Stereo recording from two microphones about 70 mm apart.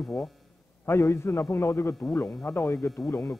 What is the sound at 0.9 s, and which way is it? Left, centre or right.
A man's voice, left.